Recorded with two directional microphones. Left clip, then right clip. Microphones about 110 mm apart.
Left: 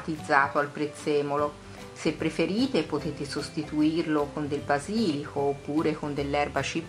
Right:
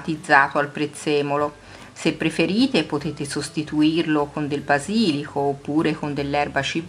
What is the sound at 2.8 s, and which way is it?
Speech, 5° left (ahead or behind).